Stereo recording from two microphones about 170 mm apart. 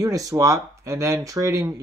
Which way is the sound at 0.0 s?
20° right (ahead or behind).